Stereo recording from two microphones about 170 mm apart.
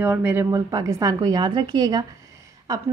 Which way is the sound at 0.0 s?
10° right (ahead or behind).